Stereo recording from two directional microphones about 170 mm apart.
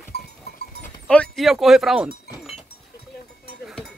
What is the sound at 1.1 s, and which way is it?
Speech, 5° left (ahead or behind).